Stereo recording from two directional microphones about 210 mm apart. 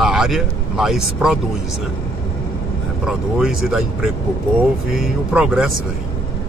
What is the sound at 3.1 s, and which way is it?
A man's voice, 5° right (ahead or behind).